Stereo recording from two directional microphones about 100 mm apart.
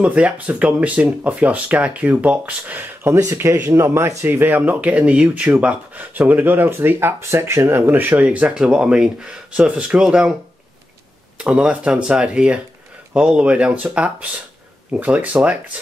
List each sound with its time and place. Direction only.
0.0 s speech: 15° right (ahead or behind)
11.3 s speech: 10° right (ahead or behind)